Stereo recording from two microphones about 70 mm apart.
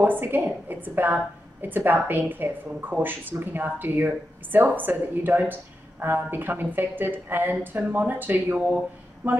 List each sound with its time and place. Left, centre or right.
0.0 s a woman's voice: right